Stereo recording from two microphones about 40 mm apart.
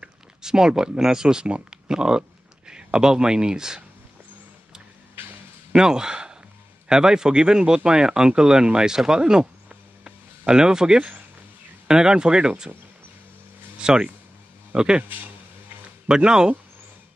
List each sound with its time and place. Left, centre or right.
0.0 s speech: centre
5.8 s a man's voice: centre
9.7 s a sound: right
11.9 s speech: centre
13.7 s speech: right
16.1 s speech: centre